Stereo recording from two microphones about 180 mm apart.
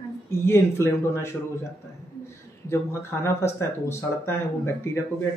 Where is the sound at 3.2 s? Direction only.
15° left (ahead or behind).